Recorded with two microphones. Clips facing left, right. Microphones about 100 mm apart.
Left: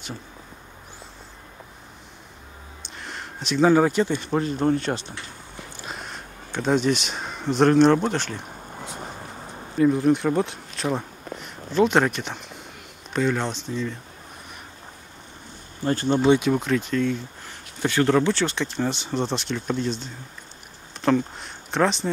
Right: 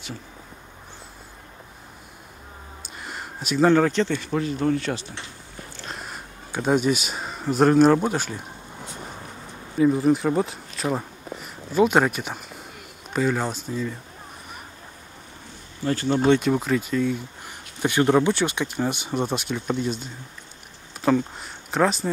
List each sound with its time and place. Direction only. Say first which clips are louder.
2.8 s a sound: even; 5° right (ahead or behind)
3.7 s speech: left 1 dB; 10° left (ahead or behind)
4.2 s speech: left 1 dB; 35° left (ahead or behind)
5.8 s speech: even; centre (ahead or behind)
9.8 s speech: even; centre (ahead or behind)
15.8 s speech: left 1 dB; 35° left (ahead or behind)
16.3 s speech: even; centre (ahead or behind)